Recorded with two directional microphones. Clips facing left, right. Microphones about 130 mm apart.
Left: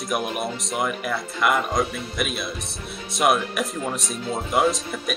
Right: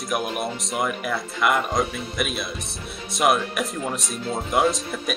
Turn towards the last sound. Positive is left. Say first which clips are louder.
# even
turn(degrees=0)  # may be behind; listen again after turning